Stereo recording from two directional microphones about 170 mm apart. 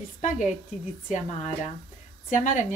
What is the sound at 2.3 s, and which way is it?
Speech, 45° left (ahead or behind).